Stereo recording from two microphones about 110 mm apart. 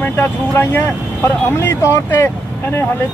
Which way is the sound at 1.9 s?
25° left (ahead or behind).